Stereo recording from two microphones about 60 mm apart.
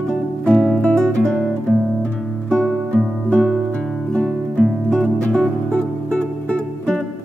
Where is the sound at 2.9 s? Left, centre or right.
Centre.